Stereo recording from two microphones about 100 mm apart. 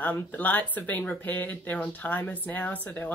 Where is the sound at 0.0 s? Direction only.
15° left (ahead or behind).